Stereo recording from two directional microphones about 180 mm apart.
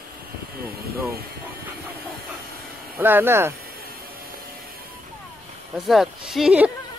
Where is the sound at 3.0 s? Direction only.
10° right (ahead or behind).